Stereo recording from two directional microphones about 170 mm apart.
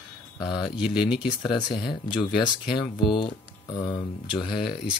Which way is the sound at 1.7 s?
30° left (ahead or behind).